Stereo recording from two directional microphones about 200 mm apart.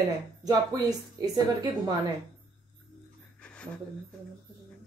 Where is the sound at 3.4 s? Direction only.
5° left (ahead or behind).